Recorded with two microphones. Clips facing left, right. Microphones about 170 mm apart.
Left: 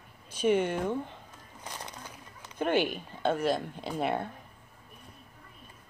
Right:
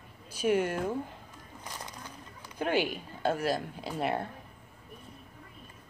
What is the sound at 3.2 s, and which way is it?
Speech, 5° right (ahead or behind).